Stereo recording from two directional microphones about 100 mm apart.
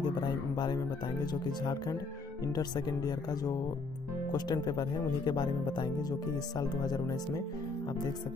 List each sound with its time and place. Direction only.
0.0 s speech: 50° left (ahead or behind)